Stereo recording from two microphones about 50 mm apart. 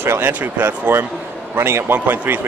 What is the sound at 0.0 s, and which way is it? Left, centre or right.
Speech, right.